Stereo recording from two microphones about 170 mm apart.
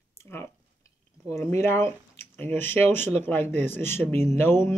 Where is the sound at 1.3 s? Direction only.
15° left (ahead or behind).